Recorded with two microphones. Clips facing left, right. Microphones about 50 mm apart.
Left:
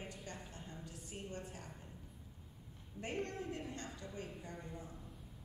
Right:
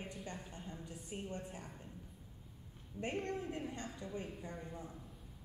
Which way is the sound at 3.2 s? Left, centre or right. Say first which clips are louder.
Right 2 dB; centre.